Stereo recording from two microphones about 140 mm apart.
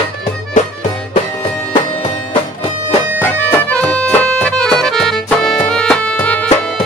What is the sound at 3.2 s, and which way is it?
Music, 10° left (ahead or behind).